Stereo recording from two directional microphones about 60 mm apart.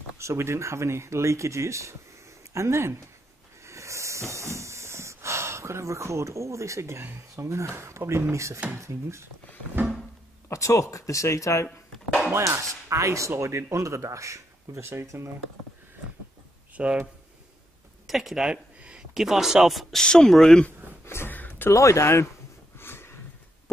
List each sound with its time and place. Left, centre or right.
0.2 s speech: right
3.6 s snort: right
7.4 s speech: right
10.5 s speech: left
12.3 s speech: right
16.7 s speech: right
18.0 s speech: centre
18.4 s a sound: centre
19.1 s speech: centre
20.0 s speech: centre
21.0 s a sound: left
21.3 s a sound: left
21.7 s speech: left
22.8 s a sound: left